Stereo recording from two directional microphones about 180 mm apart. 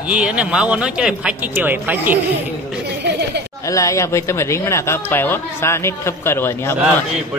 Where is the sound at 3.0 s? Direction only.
70° right (ahead or behind).